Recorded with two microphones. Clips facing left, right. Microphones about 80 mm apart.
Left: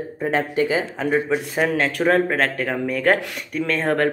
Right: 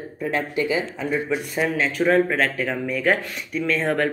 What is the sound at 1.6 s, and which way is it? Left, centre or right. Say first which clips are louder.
Speech: left 1 dB; left.